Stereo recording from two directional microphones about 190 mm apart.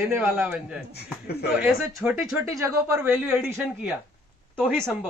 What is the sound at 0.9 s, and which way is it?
Speech, 55° left (ahead or behind).